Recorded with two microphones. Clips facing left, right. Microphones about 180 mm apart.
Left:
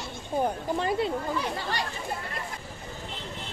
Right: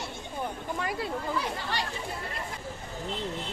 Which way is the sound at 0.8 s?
25° left (ahead or behind).